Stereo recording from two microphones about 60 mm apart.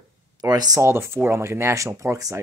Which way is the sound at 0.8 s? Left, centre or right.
Right.